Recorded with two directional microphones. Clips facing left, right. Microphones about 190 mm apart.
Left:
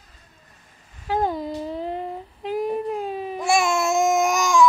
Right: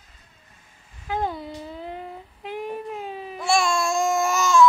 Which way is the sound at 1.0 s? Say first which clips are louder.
Left 4 dB; 45° left (ahead or behind).